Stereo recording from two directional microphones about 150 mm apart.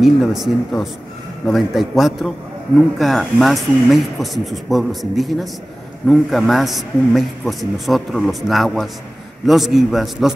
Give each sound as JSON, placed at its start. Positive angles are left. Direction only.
{"t": 0.0, "sound": "a man's voice", "side_deg": 0}